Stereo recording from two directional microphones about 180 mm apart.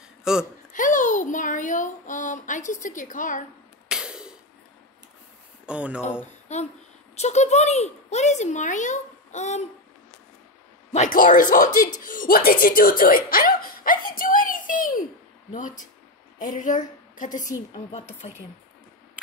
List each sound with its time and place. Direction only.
0.2 s speech: 5° right (ahead or behind)
0.7 s a sound: 45° left (ahead or behind)
3.9 s cough: 5° right (ahead or behind)
5.7 s speech: 5° right (ahead or behind)
7.2 s a child's voice: 40° left (ahead or behind)
10.9 s a woman's voice: 45° left (ahead or behind)